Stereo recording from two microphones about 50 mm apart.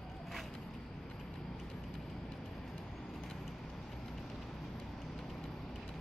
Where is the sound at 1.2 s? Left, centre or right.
Centre.